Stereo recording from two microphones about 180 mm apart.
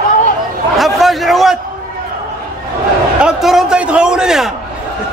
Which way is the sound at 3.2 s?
5° right (ahead or behind).